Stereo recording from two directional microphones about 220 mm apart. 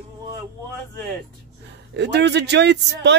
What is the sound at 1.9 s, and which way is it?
Speech, 50° right (ahead or behind).